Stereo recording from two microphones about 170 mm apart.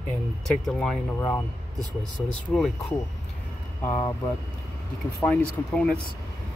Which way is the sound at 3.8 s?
15° left (ahead or behind).